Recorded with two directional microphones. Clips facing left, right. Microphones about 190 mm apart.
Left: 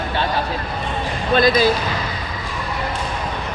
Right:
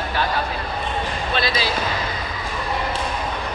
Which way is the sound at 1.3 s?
50° left (ahead or behind).